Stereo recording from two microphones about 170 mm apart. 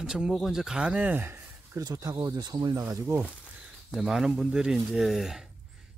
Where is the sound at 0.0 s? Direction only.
Centre (ahead or behind).